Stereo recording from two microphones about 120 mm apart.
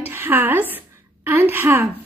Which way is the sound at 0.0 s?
15° right (ahead or behind).